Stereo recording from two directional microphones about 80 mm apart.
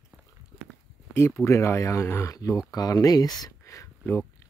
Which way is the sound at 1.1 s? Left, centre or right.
Left.